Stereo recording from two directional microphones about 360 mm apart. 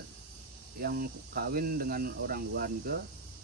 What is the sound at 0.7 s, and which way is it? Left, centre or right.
Speech, right.